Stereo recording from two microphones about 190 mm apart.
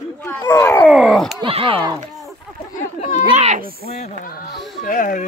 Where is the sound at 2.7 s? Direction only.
40° left (ahead or behind).